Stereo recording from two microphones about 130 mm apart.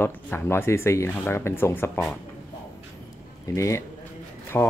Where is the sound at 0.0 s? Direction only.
15° left (ahead or behind).